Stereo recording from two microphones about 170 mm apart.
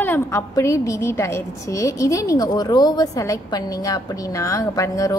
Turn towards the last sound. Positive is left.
turn(degrees=20)  # may be behind; listen again after turning